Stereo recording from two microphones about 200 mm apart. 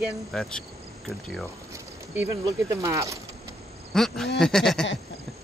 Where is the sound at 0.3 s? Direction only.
5° left (ahead or behind).